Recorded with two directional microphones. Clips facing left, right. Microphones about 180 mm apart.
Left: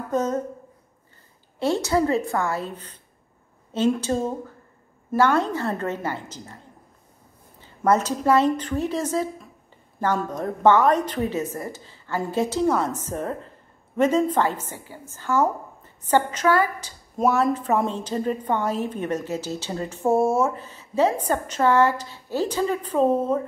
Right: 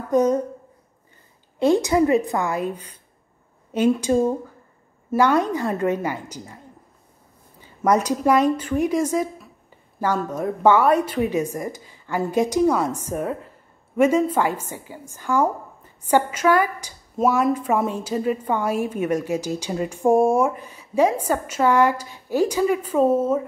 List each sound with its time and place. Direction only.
0.1 s a woman's voice: 15° right (ahead or behind)
1.6 s a woman's voice: 15° right (ahead or behind)
7.6 s a woman's voice: 15° right (ahead or behind)